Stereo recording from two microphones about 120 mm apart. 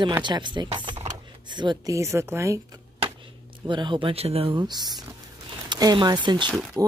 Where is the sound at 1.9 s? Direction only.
25° right (ahead or behind).